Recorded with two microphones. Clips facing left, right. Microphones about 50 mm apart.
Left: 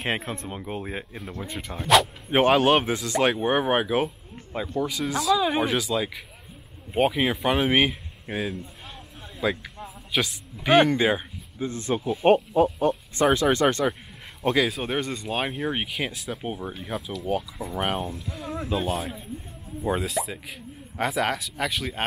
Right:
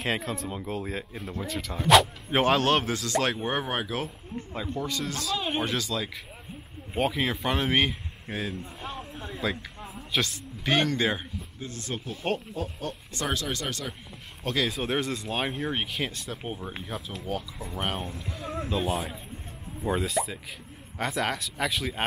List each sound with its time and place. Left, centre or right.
0.0 s speech: left
1.9 s speech: centre
2.4 s speech: centre
4.7 s speech: centre
8.9 s a sound: centre
10.1 s speech: centre; by 13.9 s left
14.5 s speech: centre
17.7 s speech: centre